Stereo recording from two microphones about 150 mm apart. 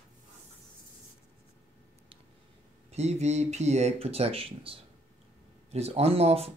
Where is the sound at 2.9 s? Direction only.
45° right (ahead or behind).